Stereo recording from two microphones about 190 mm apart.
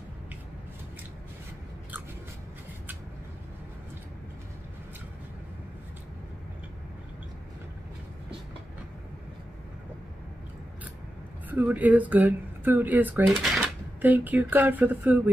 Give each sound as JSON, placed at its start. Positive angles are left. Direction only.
{"t": 11.4, "sound": "speech", "side_deg": -10}